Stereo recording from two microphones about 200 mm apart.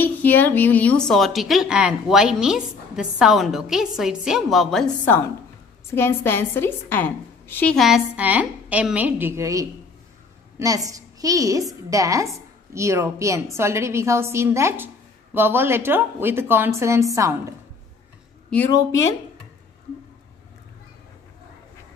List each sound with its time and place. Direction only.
0.0 s a woman's voice: 10° left (ahead or behind); by 17.6 s 15° right (ahead or behind)
18.7 s speech: 15° left (ahead or behind)